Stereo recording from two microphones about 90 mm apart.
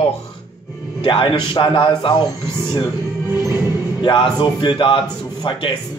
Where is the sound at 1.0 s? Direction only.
70° left (ahead or behind).